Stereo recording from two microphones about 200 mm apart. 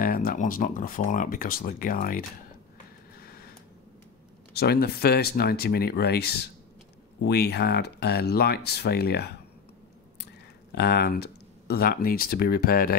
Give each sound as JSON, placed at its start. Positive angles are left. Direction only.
{"t": 0.0, "sound": "speech", "side_deg": 45}
{"t": 3.2, "sound": "a sound", "side_deg": 50}
{"t": 4.6, "sound": "speech", "side_deg": 50}
{"t": 10.7, "sound": "speech", "side_deg": 50}